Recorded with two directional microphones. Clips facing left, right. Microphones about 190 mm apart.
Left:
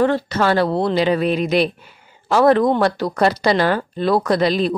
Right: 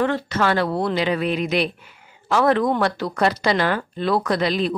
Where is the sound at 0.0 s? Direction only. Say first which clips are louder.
Left 4 dB; 35° left (ahead or behind).